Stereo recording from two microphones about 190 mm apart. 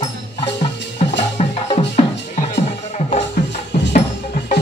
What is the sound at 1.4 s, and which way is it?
Music, 35° left (ahead or behind).